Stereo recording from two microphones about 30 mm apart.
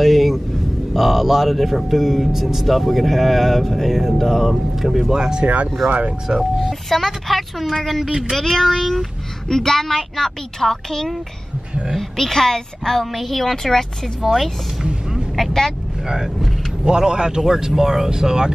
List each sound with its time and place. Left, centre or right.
0.0 s a sound: centre
0.9 s speech: centre
5.1 s a man's voice: right
6.3 s speech: right
6.7 s a woman's voice: centre
8.4 s a woman's voice: centre
13.7 s a woman's voice: centre
14.2 s speech: centre
16.8 s a man's voice: right